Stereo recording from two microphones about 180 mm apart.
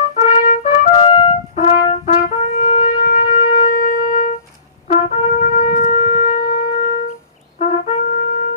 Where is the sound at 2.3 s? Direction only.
50° left (ahead or behind).